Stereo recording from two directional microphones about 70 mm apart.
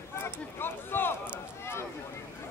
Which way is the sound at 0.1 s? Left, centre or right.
Left.